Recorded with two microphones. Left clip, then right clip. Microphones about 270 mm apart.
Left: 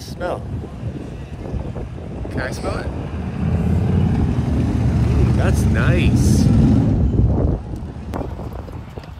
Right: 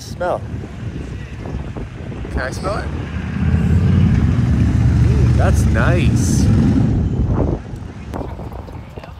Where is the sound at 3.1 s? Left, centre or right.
Left.